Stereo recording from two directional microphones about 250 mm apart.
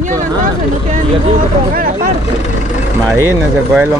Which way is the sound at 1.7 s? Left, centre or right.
Right.